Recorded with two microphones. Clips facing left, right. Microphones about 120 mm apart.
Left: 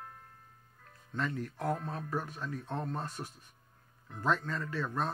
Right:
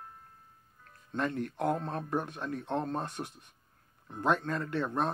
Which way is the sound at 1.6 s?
65° right (ahead or behind).